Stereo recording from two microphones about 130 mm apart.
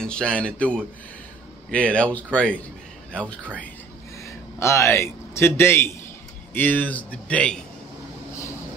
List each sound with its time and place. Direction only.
0.0 s a man's voice: 5° left (ahead or behind)
4.3 s a man's voice: 20° left (ahead or behind)